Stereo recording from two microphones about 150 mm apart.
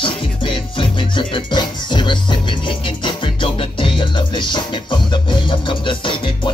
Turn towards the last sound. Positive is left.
turn(degrees=35)  # may be behind; listen again after turning